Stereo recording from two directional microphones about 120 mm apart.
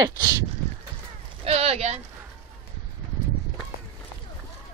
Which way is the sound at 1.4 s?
60° right (ahead or behind).